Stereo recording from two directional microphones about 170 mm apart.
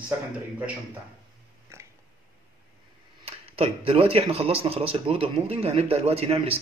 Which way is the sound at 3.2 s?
35° right (ahead or behind).